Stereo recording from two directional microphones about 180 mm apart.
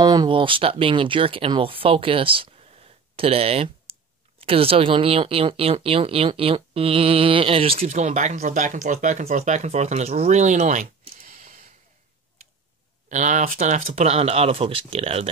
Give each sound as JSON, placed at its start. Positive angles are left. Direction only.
{"t": 0.0, "sound": "speech", "side_deg": -25}
{"t": 13.1, "sound": "speech", "side_deg": -40}